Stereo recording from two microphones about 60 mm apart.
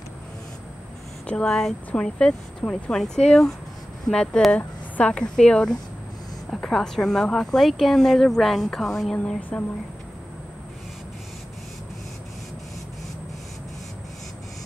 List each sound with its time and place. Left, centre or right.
1.2 s speech: centre
9.1 s a woman's voice: centre